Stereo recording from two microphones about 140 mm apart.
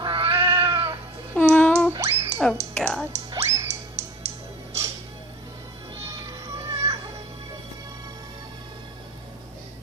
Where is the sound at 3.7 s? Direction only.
50° right (ahead or behind).